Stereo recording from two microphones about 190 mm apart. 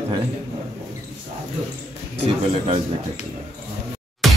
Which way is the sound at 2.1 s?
30° right (ahead or behind).